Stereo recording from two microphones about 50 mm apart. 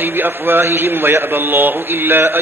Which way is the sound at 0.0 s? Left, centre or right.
Right.